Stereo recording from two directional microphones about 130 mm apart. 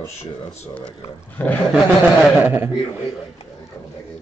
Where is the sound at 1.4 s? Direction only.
15° left (ahead or behind).